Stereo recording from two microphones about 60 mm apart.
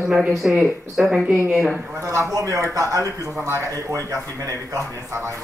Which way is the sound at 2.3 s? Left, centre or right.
Right.